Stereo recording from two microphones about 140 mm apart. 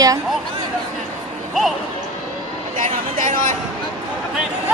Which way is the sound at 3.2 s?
65° right (ahead or behind).